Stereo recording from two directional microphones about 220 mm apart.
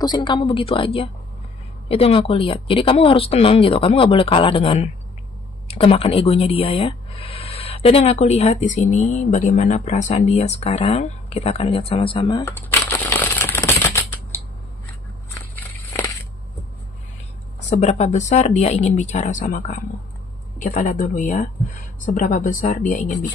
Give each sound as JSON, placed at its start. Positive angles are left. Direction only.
{"t": 0.0, "sound": "speech", "side_deg": 20}
{"t": 12.4, "sound": "a sound", "side_deg": 10}
{"t": 17.6, "sound": "speech", "side_deg": 30}